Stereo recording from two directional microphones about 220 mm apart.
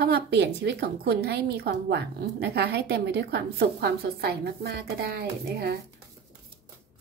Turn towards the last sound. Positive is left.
turn(degrees=-45)  # may be behind; listen again after turning